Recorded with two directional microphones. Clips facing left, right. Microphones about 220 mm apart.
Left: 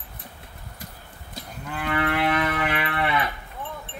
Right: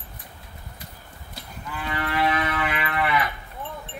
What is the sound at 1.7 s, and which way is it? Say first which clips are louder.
Moo: left 3 dB; 60° left (ahead or behind).